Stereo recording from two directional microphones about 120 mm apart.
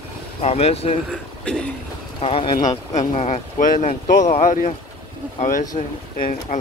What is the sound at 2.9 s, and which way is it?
Speech, 80° left.